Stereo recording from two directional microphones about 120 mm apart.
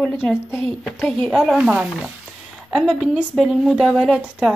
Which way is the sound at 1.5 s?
10° right (ahead or behind).